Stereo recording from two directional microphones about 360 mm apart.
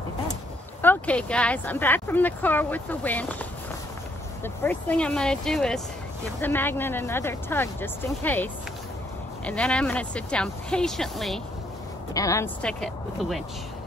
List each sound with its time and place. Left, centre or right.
0.8 s speech: centre